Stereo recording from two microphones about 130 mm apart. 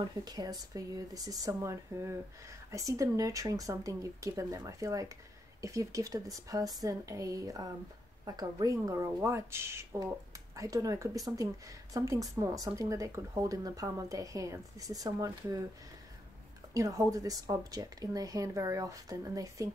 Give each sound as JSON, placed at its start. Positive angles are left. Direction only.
{"t": 0.0, "sound": "a woman's voice", "side_deg": -30}
{"t": 16.7, "sound": "a woman's voice", "side_deg": -25}